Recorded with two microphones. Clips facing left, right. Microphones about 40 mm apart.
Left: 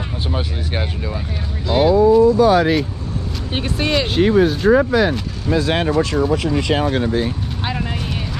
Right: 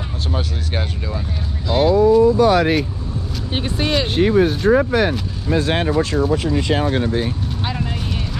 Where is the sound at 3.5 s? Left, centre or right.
Left.